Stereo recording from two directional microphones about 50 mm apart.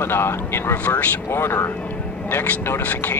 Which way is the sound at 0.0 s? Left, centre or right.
Left.